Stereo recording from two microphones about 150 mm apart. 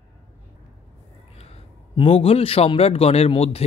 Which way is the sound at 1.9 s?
40° left (ahead or behind).